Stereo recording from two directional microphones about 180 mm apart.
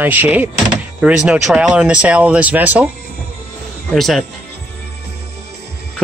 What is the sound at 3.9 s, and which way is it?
Speech, centre (ahead or behind).